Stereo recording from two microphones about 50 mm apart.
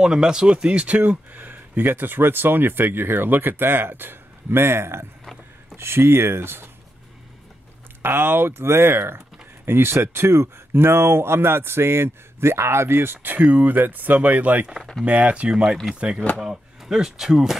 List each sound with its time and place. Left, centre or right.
0.0 s speech: centre
1.3 s speech: right
8.0 s speech: right
13.4 s speech: right
15.5 s speech: centre
16.3 s speech: centre